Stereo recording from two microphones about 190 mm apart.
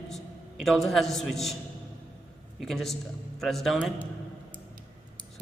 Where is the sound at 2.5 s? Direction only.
Centre (ahead or behind).